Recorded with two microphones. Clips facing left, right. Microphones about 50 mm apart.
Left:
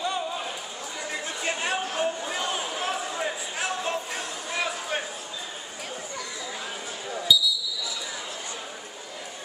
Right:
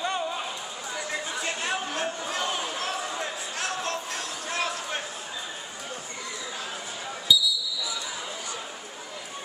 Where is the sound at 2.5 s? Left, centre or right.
Centre.